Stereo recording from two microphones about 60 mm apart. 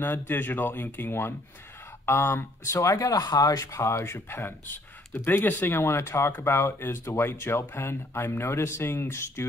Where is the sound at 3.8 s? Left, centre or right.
Left.